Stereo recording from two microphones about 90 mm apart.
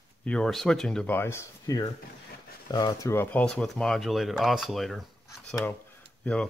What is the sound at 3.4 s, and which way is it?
Speech, 5° left (ahead or behind).